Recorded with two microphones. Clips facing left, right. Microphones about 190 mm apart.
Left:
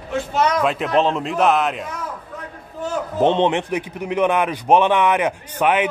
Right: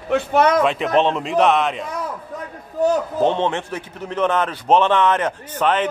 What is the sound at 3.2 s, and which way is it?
A man's voice, 20° left (ahead or behind).